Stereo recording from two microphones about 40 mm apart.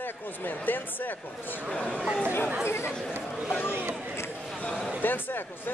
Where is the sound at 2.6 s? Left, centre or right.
Left.